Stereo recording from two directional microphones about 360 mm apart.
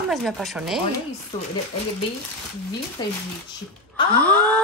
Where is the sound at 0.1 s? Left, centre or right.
Centre.